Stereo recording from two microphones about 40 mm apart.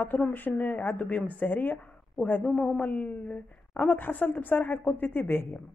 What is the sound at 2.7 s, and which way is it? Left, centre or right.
A woman's voice, left.